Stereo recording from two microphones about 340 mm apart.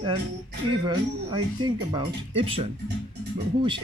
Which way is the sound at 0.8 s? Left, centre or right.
Centre.